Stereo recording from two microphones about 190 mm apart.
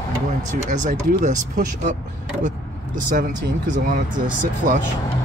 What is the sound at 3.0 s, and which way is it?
Speech, 45° right (ahead or behind).